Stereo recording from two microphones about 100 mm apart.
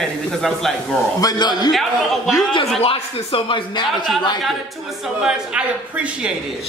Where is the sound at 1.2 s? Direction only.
40° left (ahead or behind).